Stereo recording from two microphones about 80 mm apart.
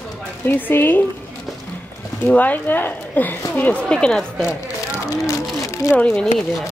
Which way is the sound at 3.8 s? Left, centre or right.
Centre.